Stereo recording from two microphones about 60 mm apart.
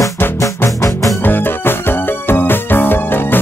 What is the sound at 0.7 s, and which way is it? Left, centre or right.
Music, left.